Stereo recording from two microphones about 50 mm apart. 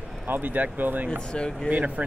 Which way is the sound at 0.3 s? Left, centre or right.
Right.